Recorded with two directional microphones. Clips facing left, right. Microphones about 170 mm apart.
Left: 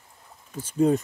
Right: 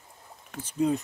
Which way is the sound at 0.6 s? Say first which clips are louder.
Left 5 dB; 45° left (ahead or behind).